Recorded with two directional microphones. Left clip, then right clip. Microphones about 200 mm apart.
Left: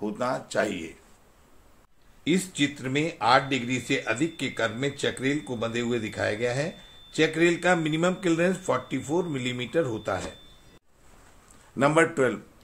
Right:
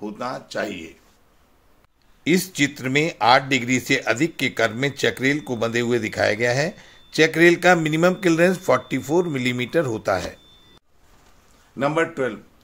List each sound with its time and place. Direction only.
0.0 s speech: centre (ahead or behind)
2.2 s speech: 45° right (ahead or behind)
11.7 s speech: 5° left (ahead or behind)